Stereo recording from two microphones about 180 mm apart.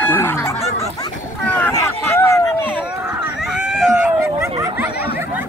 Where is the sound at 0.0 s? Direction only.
10° left (ahead or behind).